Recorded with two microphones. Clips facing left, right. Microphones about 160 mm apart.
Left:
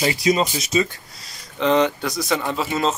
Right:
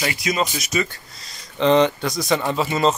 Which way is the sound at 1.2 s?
5° left (ahead or behind).